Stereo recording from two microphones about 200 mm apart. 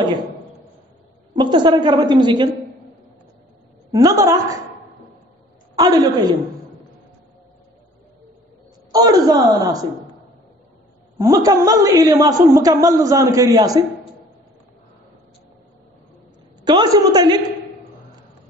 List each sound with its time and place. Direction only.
1.3 s a woman's voice: 20° right (ahead or behind)
3.9 s a woman's voice: 15° right (ahead or behind)
5.8 s a woman's voice: 20° right (ahead or behind)
8.9 s a woman's voice: 20° right (ahead or behind)
11.1 s a woman's voice: 15° right (ahead or behind)
16.6 s a woman's voice: 20° right (ahead or behind)